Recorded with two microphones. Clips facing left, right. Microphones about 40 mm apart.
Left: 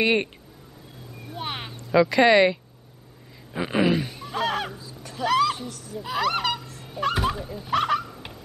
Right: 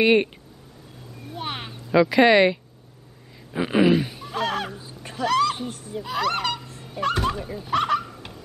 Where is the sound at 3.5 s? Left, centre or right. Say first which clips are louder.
Right 3 dB; centre.